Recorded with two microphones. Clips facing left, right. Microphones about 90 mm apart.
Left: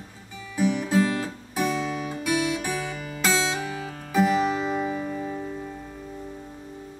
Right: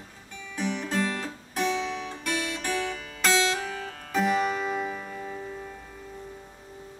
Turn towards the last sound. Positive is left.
turn(degrees=5)  # may be behind; listen again after turning